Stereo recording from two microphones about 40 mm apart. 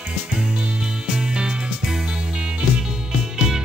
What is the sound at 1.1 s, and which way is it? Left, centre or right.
Music, centre.